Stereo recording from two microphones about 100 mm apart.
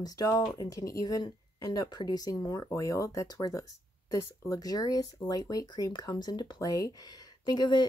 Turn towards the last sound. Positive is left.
turn(degrees=45)  # may be behind; listen again after turning